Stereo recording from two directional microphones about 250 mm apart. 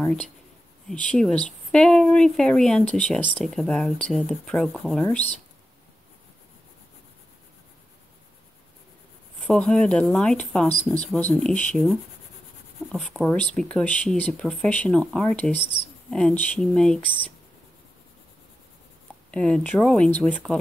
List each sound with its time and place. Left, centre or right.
0.0 s speech: centre
9.5 s speech: centre
19.3 s speech: centre